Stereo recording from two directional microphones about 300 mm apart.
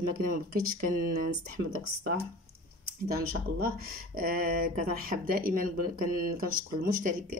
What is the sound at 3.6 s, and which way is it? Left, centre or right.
Speech, right.